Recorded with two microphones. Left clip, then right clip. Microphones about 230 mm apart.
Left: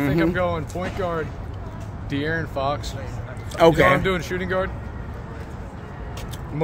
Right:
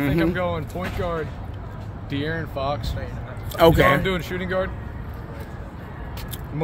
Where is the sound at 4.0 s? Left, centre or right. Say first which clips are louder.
Left 2 dB; centre.